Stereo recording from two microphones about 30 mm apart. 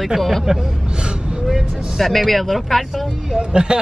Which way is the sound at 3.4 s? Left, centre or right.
Right.